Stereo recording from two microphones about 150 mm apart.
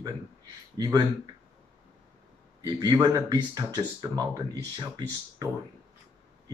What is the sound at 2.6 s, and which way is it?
Speech, 25° right (ahead or behind).